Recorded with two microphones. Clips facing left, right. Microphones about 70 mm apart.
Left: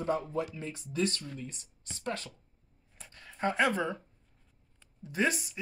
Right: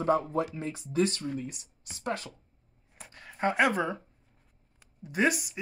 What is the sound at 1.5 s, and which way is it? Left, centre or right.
Speech, centre.